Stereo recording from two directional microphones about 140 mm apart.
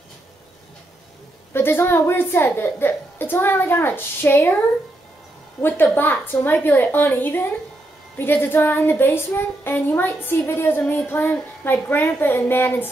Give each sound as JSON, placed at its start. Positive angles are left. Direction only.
{"t": 1.5, "sound": "child singing", "side_deg": 15}
{"t": 5.6, "sound": "child singing", "side_deg": 15}